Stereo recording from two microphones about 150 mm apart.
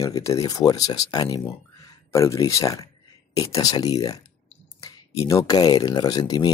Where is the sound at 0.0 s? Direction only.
20° left (ahead or behind).